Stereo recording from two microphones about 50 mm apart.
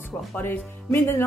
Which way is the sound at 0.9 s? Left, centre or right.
Left.